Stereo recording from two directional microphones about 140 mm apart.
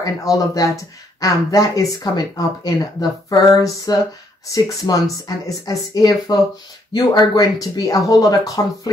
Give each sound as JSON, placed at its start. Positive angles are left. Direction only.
{"t": 0.0, "sound": "speech", "side_deg": 25}